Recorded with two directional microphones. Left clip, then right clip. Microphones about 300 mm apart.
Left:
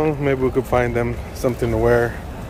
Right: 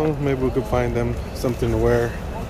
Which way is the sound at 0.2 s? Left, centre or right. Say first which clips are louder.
Left 3 dB; centre.